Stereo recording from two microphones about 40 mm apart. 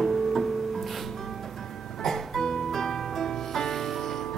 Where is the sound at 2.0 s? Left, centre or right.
Centre.